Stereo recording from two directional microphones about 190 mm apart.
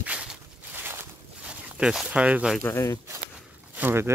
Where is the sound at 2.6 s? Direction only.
20° left (ahead or behind).